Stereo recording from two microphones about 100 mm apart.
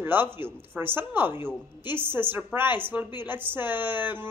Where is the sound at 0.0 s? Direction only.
20° right (ahead or behind).